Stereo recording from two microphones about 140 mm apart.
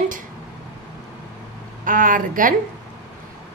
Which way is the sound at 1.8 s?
75° right (ahead or behind).